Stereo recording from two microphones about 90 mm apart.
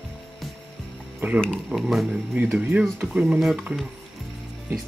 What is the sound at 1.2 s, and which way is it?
Speech, 20° right (ahead or behind).